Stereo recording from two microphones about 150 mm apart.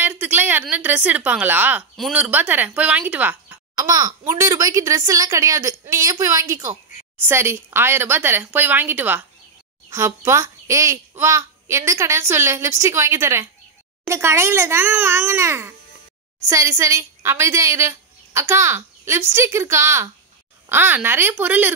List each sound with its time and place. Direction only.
0.0 s speech: 10° right (ahead or behind)
3.7 s a child's voice: 25° right (ahead or behind)